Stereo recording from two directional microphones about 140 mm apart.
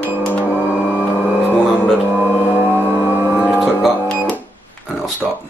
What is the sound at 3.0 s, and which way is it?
Vehicle, 20° left (ahead or behind).